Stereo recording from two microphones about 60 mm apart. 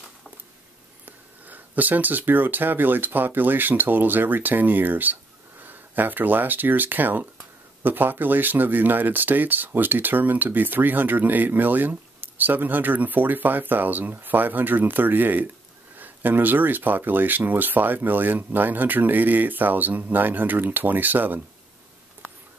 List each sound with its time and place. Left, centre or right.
1.0 s speech: right